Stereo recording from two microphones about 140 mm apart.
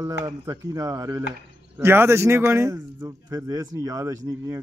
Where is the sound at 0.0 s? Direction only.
25° right (ahead or behind).